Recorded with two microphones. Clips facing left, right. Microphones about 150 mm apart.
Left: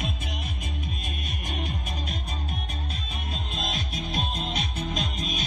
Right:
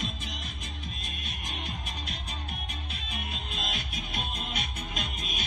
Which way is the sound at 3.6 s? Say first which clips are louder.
Left 5 dB; 35° left (ahead or behind).